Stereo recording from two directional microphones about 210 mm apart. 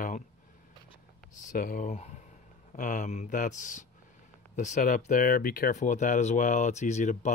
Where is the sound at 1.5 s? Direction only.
40° left (ahead or behind).